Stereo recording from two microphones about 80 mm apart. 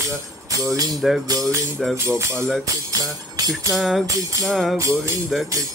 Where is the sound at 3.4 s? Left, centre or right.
Right.